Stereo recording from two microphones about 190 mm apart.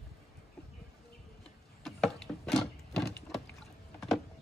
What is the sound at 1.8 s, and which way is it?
Door, centre (ahead or behind).